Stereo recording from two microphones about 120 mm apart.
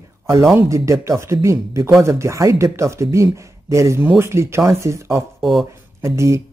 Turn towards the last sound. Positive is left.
turn(degrees=-25)  # may be behind; listen again after turning